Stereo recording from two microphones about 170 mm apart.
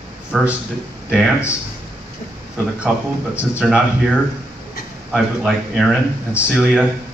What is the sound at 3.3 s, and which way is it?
Speech, 5° right (ahead or behind).